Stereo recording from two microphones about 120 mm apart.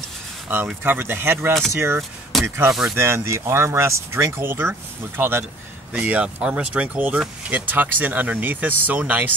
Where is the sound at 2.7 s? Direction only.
5° right (ahead or behind).